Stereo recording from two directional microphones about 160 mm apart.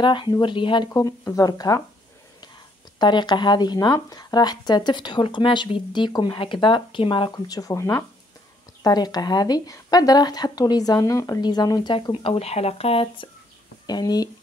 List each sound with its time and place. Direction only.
0.0 s speech: 30° left (ahead or behind)
3.0 s speech: 30° left (ahead or behind)
13.8 s speech: 25° left (ahead or behind)